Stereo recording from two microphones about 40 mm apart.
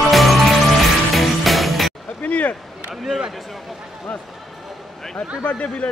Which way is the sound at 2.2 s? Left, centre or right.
Left.